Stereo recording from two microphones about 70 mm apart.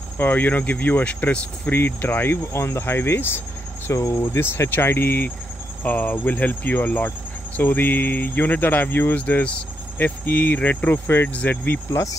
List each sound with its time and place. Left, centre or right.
0.2 s speech: left
3.9 s speech: left
4.4 s speech: left